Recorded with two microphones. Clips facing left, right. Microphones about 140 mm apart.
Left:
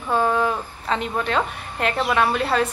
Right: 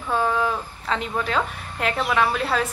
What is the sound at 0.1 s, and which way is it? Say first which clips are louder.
A woman's voice: left 2 dB; 5° left (ahead or behind).